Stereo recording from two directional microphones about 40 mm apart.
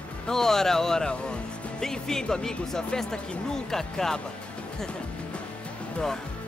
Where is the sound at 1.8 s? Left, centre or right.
Centre.